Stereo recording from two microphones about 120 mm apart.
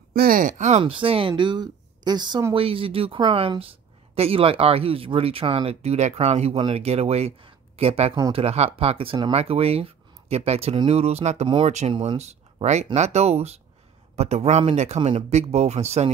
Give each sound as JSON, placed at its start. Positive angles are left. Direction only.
{"t": 0.5, "sound": "speech", "side_deg": -85}
{"t": 0.8, "sound": "speech", "side_deg": -50}
{"t": 2.5, "sound": "speech", "side_deg": -50}